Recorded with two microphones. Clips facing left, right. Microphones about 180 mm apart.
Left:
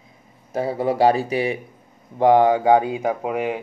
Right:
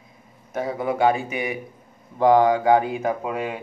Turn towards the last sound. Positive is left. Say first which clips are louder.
# left 3 dB
turn(degrees=20)  # may be behind; listen again after turning